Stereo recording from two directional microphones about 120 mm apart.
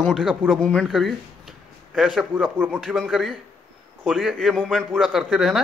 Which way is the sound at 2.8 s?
Centre (ahead or behind).